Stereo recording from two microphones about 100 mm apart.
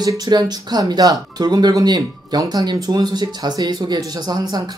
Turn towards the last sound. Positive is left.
turn(degrees=-45)  # may be behind; listen again after turning